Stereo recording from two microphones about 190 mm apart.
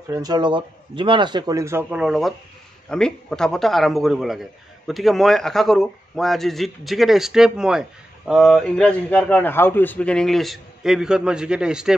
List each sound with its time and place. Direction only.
0.1 s a man's voice: 20° right (ahead or behind); by 11.9 s 5° right (ahead or behind)